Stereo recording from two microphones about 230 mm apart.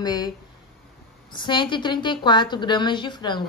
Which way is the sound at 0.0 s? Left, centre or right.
Centre.